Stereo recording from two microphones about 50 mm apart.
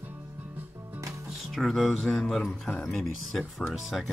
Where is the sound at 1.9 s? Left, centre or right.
Centre.